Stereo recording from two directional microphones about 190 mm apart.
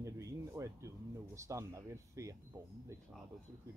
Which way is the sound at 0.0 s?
15° right (ahead or behind).